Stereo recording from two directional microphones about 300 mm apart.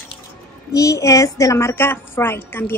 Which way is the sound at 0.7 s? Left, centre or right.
Centre.